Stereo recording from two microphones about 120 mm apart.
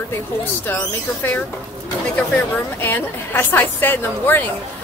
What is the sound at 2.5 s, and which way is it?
Speech, 15° left (ahead or behind).